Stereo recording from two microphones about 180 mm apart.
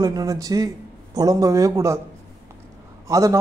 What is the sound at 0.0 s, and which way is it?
Speech, 20° right (ahead or behind).